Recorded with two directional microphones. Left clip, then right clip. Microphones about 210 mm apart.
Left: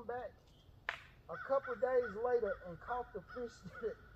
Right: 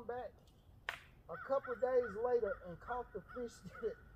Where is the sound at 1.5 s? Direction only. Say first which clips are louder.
Left 1 dB; 30° right (ahead or behind).